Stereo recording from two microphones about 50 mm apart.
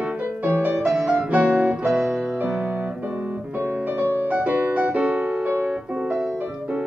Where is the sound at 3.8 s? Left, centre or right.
Right.